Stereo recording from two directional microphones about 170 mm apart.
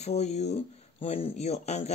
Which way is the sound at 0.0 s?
40° left (ahead or behind).